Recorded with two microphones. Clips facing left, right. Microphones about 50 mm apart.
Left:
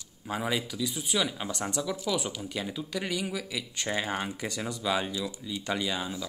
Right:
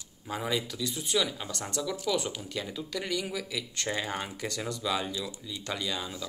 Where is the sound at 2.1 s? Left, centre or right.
Centre.